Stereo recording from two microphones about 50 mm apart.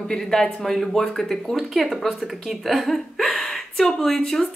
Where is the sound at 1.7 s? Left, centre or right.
Centre.